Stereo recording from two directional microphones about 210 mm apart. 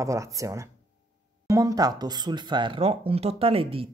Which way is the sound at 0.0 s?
15° right (ahead or behind).